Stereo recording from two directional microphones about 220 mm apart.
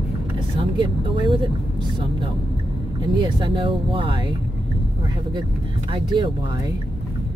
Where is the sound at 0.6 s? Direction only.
20° right (ahead or behind).